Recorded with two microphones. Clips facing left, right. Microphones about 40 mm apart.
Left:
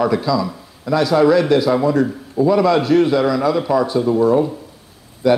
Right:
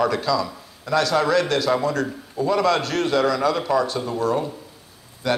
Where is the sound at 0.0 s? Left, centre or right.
Centre.